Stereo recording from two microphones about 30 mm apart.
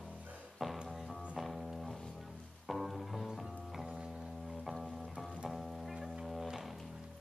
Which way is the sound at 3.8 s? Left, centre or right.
Right.